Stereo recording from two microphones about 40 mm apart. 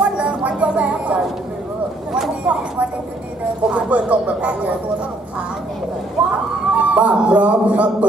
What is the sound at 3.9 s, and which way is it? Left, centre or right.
Speech, right.